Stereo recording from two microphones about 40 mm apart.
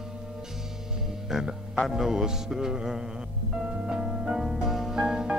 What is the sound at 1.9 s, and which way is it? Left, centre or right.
Music, centre.